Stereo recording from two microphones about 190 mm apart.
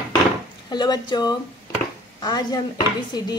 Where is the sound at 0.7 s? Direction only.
20° left (ahead or behind).